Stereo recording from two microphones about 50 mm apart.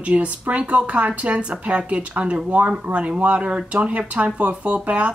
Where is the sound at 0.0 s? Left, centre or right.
Right.